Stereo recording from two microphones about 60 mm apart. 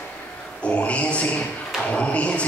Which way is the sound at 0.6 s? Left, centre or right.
Left.